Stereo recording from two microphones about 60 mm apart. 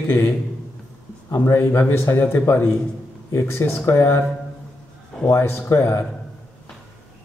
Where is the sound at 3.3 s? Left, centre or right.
Left.